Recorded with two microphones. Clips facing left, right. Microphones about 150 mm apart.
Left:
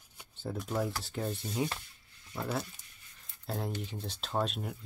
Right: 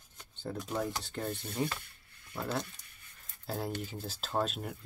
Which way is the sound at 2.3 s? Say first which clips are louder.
Even; 5° left (ahead or behind).